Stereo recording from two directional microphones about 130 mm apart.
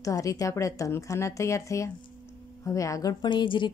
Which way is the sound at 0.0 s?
25° left (ahead or behind).